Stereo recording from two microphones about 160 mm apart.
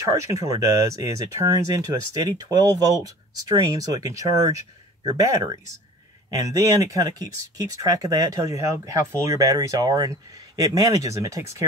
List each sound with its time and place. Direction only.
0.1 s speech: 20° right (ahead or behind)